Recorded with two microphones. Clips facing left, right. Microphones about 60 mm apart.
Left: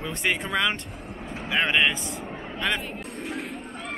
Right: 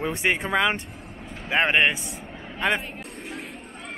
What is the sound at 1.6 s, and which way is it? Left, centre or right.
Speech, right.